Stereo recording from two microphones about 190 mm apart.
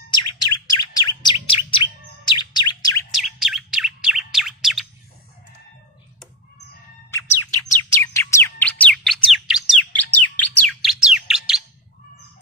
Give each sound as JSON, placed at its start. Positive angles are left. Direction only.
{"t": 0.1, "sound": "chirp", "side_deg": 20}
{"t": 3.1, "sound": "chirp", "side_deg": 0}
{"t": 7.9, "sound": "chirp", "side_deg": 15}
{"t": 9.9, "sound": "bird", "side_deg": 10}